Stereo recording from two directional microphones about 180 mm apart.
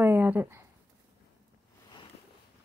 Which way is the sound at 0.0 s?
10° right (ahead or behind).